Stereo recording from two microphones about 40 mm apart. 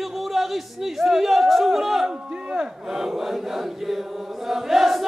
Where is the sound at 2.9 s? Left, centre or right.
Centre.